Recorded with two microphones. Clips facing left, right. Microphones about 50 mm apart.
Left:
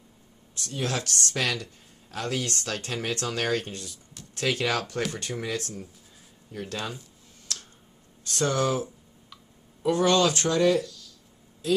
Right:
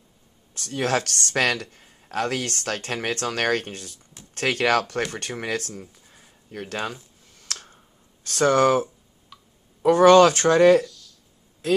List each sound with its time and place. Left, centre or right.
0.6 s speech: right
6.5 s speech: right
7.4 s clicking: right
8.3 s speech: right
9.8 s speech: right
10.9 s a sound: centre